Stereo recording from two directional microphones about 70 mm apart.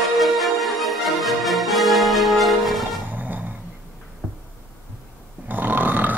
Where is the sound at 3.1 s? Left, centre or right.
Right.